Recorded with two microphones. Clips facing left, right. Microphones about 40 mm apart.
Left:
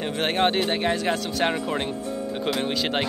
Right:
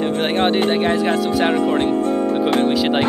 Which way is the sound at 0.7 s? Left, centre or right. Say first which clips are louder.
Right 6 dB; right.